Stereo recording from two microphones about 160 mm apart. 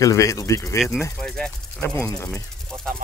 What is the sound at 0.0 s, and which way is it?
Speech, 20° left (ahead or behind).